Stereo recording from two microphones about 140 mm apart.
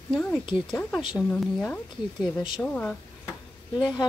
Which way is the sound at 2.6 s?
5° left (ahead or behind).